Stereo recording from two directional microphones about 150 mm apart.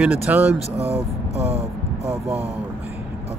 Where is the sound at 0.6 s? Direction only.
45° right (ahead or behind).